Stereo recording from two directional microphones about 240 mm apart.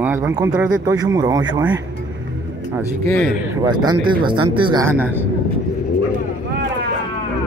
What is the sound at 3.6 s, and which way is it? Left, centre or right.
Speech, centre.